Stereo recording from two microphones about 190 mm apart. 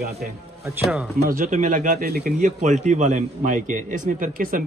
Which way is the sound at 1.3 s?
40° right (ahead or behind).